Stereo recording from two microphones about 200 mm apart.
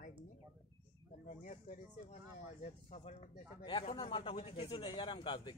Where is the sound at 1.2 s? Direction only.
40° left (ahead or behind).